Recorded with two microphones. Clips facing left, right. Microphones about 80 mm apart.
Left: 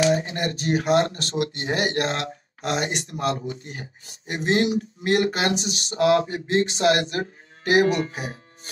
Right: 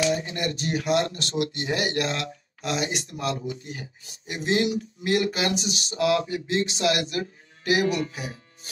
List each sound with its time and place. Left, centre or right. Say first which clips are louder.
0.0 s speech: left 4 dB; left